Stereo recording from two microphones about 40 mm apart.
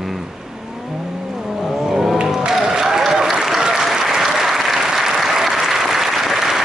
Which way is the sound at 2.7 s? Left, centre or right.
Centre.